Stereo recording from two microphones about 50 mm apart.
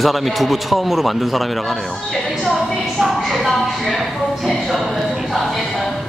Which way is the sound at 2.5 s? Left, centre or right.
Centre.